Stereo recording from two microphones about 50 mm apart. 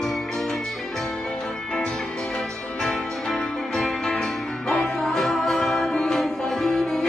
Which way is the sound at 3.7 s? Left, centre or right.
Centre.